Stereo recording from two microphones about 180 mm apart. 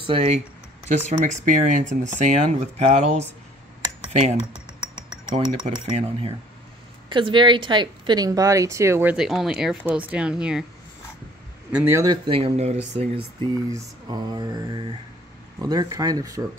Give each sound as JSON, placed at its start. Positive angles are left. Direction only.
{"t": 0.0, "sound": "speech", "side_deg": -30}
{"t": 0.8, "sound": "speech", "side_deg": -45}
{"t": 5.6, "sound": "speech", "side_deg": -35}
{"t": 9.1, "sound": "speech", "side_deg": 0}
{"t": 11.7, "sound": "speech", "side_deg": -10}
{"t": 13.4, "sound": "speech", "side_deg": -20}